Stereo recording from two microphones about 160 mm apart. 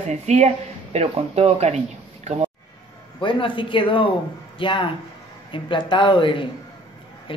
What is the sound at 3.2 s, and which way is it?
Speech, 30° left (ahead or behind).